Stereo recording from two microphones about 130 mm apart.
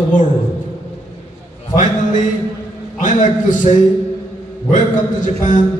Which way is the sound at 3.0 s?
80° left.